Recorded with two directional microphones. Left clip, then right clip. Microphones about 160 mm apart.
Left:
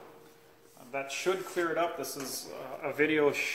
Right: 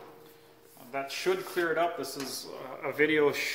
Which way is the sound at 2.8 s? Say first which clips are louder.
Right 2 dB; 40° left (ahead or behind).